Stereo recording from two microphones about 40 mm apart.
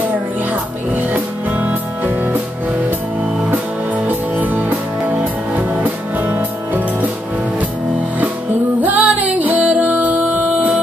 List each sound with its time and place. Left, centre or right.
0.9 s music: right
3.4 s music: right
8.8 s music: right